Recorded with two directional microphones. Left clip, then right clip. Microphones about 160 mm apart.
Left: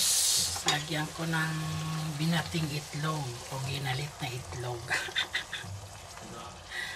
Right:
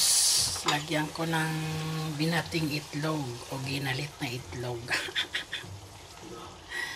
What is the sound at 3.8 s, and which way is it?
Speech, 30° right (ahead or behind).